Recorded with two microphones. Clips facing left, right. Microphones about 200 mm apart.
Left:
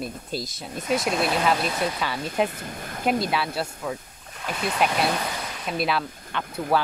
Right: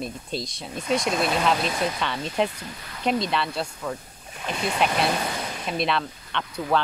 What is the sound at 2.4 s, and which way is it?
Speech, 50° left (ahead or behind).